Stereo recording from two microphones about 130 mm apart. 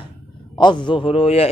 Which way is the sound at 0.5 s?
35° left (ahead or behind).